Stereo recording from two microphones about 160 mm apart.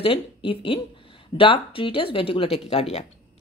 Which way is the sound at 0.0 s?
35° left (ahead or behind).